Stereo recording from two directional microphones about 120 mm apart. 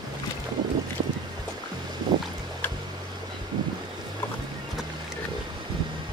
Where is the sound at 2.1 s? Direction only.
40° right (ahead or behind).